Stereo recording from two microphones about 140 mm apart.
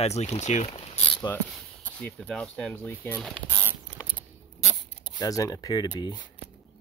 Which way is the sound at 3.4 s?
15° left (ahead or behind).